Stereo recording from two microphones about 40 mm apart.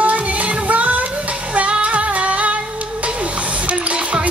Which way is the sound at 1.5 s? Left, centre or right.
Right.